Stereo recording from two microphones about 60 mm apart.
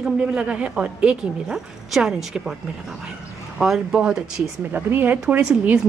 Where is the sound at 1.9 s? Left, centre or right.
Centre.